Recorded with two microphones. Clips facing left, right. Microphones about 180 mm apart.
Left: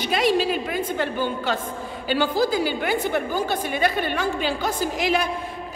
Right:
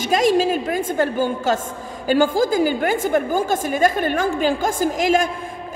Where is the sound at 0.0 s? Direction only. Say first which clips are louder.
Right 4 dB; 45° right (ahead or behind).